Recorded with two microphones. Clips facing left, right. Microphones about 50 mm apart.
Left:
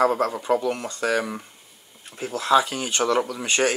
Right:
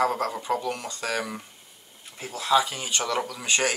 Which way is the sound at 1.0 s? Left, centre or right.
Centre.